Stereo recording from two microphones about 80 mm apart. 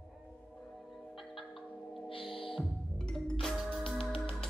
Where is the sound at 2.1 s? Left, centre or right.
Left.